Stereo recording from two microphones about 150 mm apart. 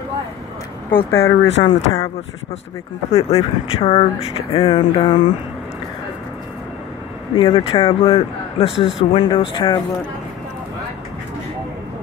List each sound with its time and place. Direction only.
0.8 s speech: 80° left
1.6 s a man's voice: 30° left (ahead or behind)
3.1 s a man's voice: 45° left (ahead or behind)
7.3 s a man's voice: 35° left (ahead or behind)